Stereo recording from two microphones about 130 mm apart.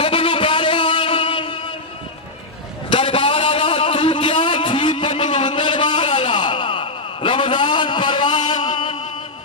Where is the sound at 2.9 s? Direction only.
40° left (ahead or behind).